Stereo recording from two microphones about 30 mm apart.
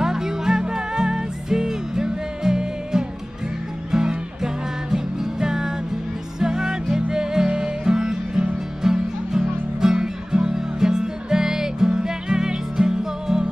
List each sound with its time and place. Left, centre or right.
0.0 s music: centre